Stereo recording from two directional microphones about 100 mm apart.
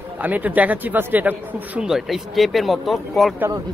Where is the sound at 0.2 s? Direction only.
15° right (ahead or behind).